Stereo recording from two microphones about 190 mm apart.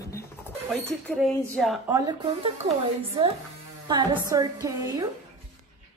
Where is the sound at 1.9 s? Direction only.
20° right (ahead or behind).